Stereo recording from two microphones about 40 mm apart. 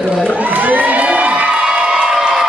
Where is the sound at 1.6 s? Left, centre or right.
Right.